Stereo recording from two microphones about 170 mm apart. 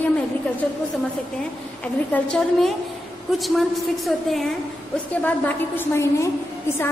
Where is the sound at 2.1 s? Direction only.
5° left (ahead or behind).